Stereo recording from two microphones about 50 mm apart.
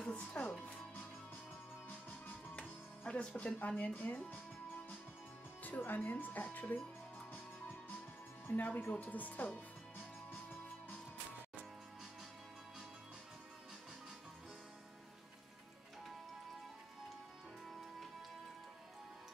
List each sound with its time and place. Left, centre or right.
0.0 s speech: centre
0.7 s music: left
3.1 s speech: left
3.5 s speech: left
5.8 s speech: left
8.5 s speech: left